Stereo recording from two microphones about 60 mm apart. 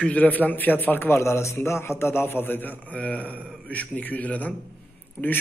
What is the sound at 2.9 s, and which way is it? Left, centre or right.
A man's voice, centre.